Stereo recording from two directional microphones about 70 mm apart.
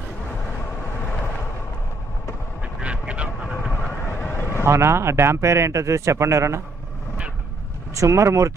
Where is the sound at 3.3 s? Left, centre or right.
Centre.